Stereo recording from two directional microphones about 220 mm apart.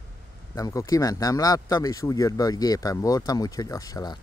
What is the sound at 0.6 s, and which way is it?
Speech, 15° left (ahead or behind).